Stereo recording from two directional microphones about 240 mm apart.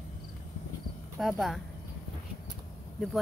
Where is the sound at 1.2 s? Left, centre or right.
Centre.